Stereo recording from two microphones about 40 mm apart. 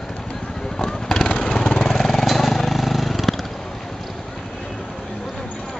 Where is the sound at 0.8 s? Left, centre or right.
Centre.